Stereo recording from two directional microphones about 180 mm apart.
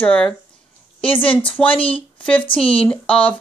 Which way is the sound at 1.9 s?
10° left (ahead or behind).